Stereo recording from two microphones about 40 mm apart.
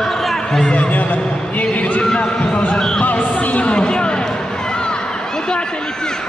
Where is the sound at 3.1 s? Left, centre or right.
Left.